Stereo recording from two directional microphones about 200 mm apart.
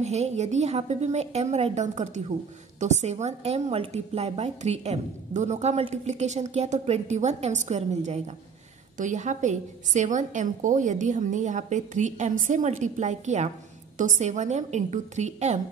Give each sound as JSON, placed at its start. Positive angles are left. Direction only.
{"t": 0.0, "sound": "a woman's voice", "side_deg": -35}